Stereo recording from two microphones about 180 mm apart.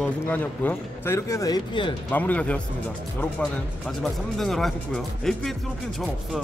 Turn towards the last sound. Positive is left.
turn(degrees=0)  # may be behind; listen again after turning